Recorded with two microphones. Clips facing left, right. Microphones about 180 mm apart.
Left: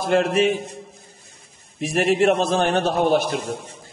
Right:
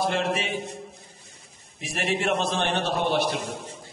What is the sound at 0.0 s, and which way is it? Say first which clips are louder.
Speech: left 6 dB; 50° left (ahead or behind).